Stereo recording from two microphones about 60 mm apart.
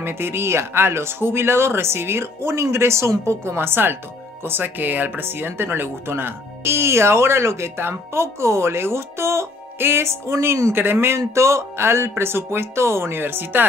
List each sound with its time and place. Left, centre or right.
0.0 s speech: right
3.5 s speech: right
11.1 s speech: right